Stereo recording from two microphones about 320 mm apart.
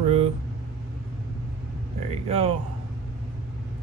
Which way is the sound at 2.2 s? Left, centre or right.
Centre.